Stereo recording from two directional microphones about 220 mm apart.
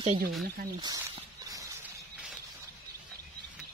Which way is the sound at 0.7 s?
20° right (ahead or behind).